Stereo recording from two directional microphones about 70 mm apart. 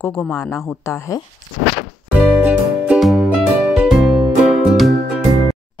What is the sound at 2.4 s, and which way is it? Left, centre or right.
Music, centre.